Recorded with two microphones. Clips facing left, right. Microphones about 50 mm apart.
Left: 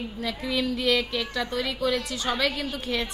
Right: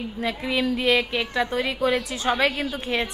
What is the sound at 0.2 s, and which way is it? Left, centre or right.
A woman's voice, right.